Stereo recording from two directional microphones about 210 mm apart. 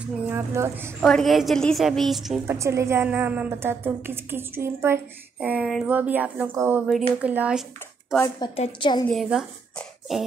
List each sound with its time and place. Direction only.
0.3 s a woman's voice: 10° right (ahead or behind)
1.0 s a woman's voice: centre (ahead or behind)
2.4 s a woman's voice: 15° right (ahead or behind)
8.4 s a woman's voice: 25° left (ahead or behind)
9.0 s speech: centre (ahead or behind)